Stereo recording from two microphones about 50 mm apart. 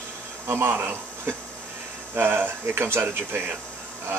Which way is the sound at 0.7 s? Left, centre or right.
Right.